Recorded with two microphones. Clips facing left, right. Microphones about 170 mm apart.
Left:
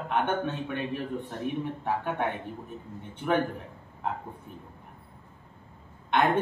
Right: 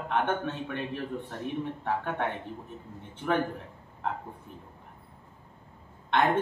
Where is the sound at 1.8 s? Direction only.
10° left (ahead or behind).